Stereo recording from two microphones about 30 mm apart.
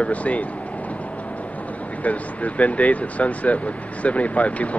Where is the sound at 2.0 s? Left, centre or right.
Left.